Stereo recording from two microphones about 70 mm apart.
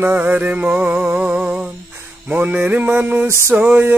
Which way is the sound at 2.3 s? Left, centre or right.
Right.